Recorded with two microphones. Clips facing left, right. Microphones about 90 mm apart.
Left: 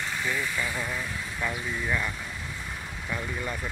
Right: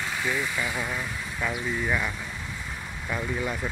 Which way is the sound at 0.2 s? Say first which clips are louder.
Right 2 dB; 15° right (ahead or behind).